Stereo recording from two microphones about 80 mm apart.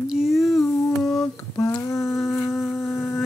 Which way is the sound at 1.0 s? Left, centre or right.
Left.